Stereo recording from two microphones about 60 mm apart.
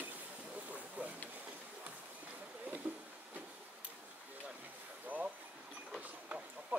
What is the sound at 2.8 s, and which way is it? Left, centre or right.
Vehicle, right.